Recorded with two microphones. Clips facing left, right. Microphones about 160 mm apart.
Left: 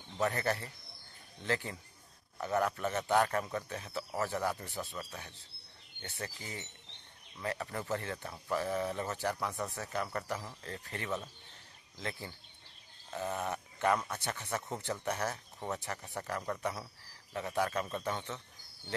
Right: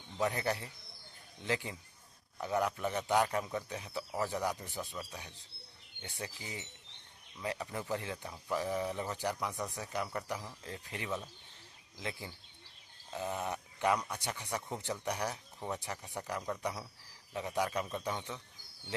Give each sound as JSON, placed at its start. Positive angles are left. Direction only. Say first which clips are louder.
{"t": 0.2, "sound": "speech", "louder": "left 1 dB", "side_deg": -15}